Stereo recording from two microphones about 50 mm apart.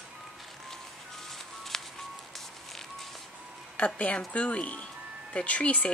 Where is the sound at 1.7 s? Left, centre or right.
Centre.